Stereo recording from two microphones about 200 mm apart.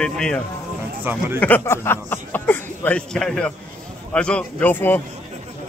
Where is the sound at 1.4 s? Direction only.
10° left (ahead or behind).